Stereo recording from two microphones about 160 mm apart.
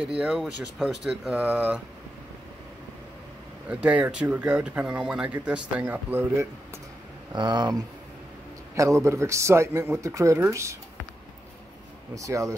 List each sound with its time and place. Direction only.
0.0 s speech: 5° right (ahead or behind)
3.8 s speech: 10° right (ahead or behind)
7.3 s speech: 25° right (ahead or behind)
12.2 s speech: 20° right (ahead or behind)